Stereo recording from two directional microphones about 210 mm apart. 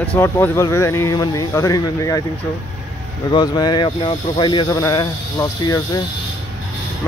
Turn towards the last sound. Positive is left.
turn(degrees=15)  # may be behind; listen again after turning